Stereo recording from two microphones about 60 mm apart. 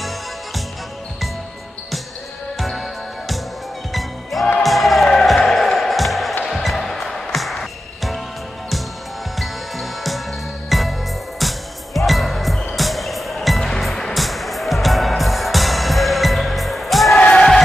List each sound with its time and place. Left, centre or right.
3.9 s music: centre
9.4 s music: centre
17.2 s music: left